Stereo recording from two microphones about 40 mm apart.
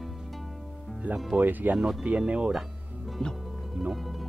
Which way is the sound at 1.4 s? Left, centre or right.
Right.